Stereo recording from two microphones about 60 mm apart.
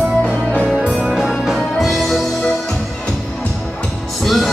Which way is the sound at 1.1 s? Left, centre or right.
Centre.